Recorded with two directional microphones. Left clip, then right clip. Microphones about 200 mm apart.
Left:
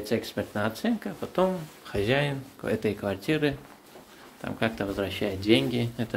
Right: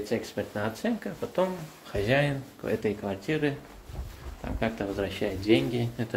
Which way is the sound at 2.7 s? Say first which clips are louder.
Left 1 dB; 30° left (ahead or behind).